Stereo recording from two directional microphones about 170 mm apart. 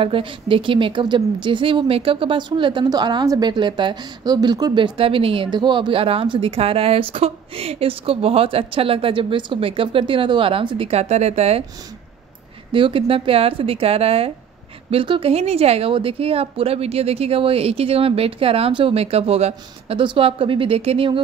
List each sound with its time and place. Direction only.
0.0 s speech: 30° right (ahead or behind)
12.7 s speech: 30° right (ahead or behind)